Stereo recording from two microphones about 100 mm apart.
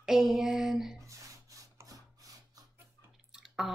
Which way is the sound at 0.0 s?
5° right (ahead or behind).